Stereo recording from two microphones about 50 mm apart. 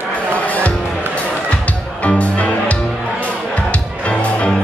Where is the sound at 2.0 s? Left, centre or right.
Left.